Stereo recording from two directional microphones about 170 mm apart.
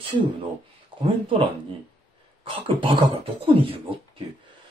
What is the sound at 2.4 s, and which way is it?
Speech, 30° right (ahead or behind).